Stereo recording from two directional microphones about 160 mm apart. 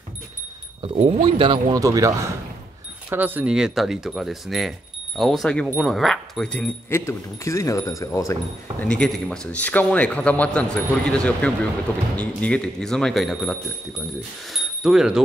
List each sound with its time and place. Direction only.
0.8 s speech: 35° right (ahead or behind); by 6.7 s 5° left (ahead or behind)
6.9 s speech: 20° left (ahead or behind)
8.8 s a man's voice: 5° left (ahead or behind)